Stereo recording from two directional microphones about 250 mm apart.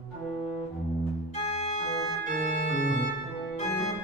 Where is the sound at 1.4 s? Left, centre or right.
Left.